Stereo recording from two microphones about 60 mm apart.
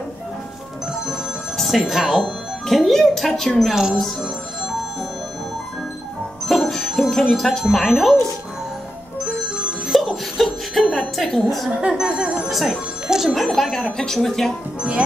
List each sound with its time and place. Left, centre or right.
1.6 s speech: centre
3.7 s speech: centre
6.4 s music: centre
7.7 s speech: centre
9.8 s laughter: centre
11.1 s music: centre
11.9 s speech: centre
13.3 s speech: centre
14.8 s speech: centre